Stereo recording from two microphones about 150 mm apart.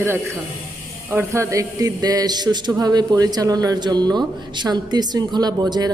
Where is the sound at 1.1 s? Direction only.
20° right (ahead or behind).